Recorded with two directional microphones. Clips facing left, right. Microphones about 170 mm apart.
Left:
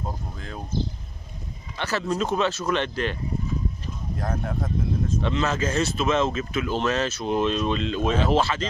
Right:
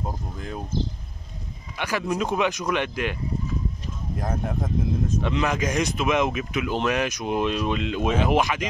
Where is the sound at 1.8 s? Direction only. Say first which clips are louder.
Even; 10° right (ahead or behind).